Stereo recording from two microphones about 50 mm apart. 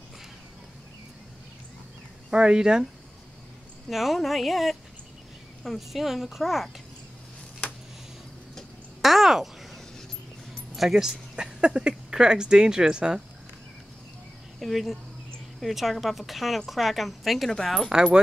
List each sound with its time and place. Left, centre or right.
2.3 s speech: centre
3.9 s speech: centre
9.0 s a sound: centre
10.8 s speech: centre
14.6 s speech: centre
17.8 s speech: centre